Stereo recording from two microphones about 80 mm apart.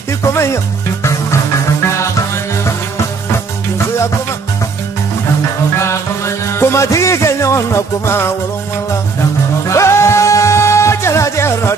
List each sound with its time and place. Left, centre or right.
0.3 s music: left
2.0 s music: left
5.8 s music: left
9.7 s music: left